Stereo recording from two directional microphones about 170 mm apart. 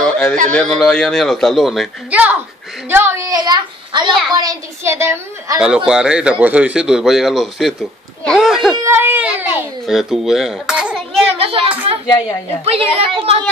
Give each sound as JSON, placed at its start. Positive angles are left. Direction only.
{"t": 0.0, "sound": "a sound", "side_deg": 5}
{"t": 0.5, "sound": "a child's voice", "side_deg": 5}
{"t": 5.9, "sound": "speech", "side_deg": -5}
{"t": 8.7, "sound": "a child's voice", "side_deg": -15}
{"t": 11.3, "sound": "a woman's voice", "side_deg": -35}